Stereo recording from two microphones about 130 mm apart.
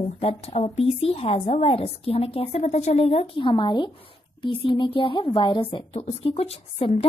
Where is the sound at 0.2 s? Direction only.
50° left (ahead or behind).